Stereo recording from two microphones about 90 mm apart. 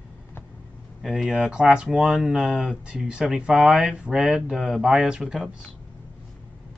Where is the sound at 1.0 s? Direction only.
5° right (ahead or behind).